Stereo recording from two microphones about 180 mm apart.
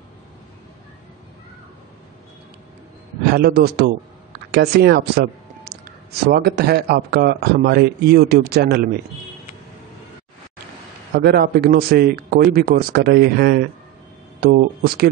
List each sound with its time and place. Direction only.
3.3 s a man's voice: 60° right (ahead or behind)
11.1 s a man's voice: 60° right (ahead or behind)